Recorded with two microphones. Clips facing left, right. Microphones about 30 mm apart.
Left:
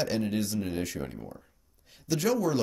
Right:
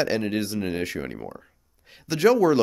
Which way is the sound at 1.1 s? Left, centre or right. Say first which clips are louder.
Right 6 dB; right.